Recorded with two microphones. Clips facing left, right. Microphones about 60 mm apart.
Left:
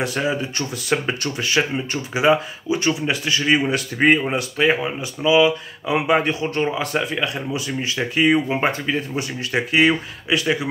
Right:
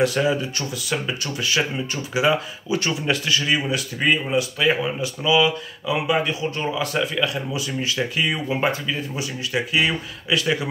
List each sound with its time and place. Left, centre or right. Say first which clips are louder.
0.0 s speech: right 2 dB; left
0.8 s speech: left 5 dB; left
4.6 s speech: left 1 dB; left
5.9 s speech: left 3 dB; left
8.7 s speech: left 3 dB; left
10.3 s speech: left 1 dB; left